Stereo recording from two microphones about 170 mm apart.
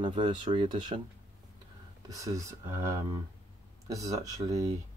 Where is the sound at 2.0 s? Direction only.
20° right (ahead or behind).